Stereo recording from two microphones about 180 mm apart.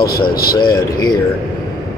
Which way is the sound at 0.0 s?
55° left (ahead or behind).